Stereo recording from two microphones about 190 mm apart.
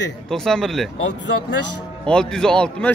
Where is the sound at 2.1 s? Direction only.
5° left (ahead or behind).